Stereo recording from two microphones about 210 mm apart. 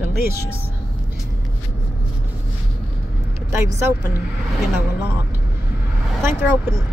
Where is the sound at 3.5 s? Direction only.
15° right (ahead or behind).